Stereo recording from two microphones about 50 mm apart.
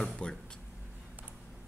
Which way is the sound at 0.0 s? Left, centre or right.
Centre.